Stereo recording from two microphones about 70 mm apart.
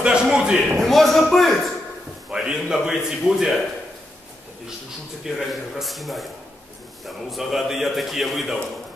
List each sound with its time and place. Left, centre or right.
0.0 s a man's voice: centre
0.7 s a man's voice: centre
2.3 s a man's voice: centre
5.2 s a man's voice: centre
7.2 s a man's voice: centre